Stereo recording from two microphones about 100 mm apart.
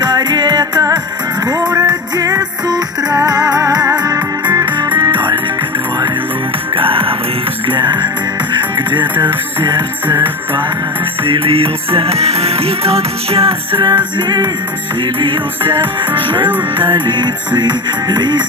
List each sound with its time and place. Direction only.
0.0 s music: 45° right (ahead or behind)
4.6 s music: 50° right (ahead or behind)
6.8 s music: 65° right (ahead or behind)
7.6 s music: 50° right (ahead or behind)
10.0 s music: 20° right (ahead or behind)
11.2 s music: 65° right (ahead or behind)
14.1 s music: 45° right (ahead or behind)
15.1 s music: 60° right (ahead or behind)